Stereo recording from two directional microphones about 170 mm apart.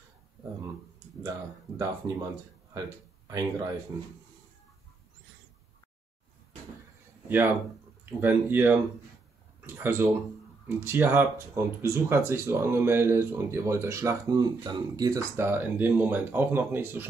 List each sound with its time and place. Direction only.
1.8 s speech: 20° right (ahead or behind)
3.3 s speech: 20° right (ahead or behind)
7.2 s speech: 10° right (ahead or behind)